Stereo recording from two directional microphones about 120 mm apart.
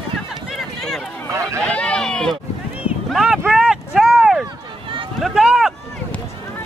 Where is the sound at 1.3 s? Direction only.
25° right (ahead or behind).